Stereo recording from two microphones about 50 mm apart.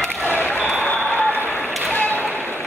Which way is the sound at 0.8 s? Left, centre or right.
Left.